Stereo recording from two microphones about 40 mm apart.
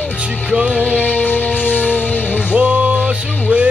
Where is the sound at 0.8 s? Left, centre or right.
Left.